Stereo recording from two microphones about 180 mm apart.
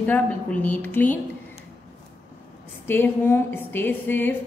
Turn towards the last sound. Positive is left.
turn(degrees=10)  # may be behind; listen again after turning